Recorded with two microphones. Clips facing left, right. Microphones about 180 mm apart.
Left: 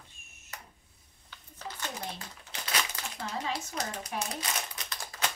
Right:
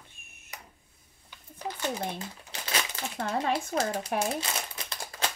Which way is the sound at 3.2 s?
55° right (ahead or behind).